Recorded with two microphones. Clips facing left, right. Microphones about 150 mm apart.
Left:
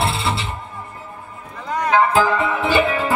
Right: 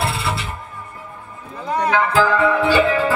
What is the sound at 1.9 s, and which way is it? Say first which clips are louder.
Music: left 2 dB; 20° left (ahead or behind).